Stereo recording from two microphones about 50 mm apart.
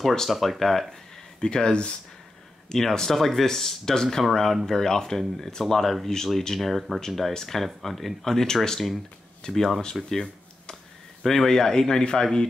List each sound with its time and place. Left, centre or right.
0.0 s speech: centre
1.4 s speech: centre
10.0 s cash register: centre
11.2 s speech: centre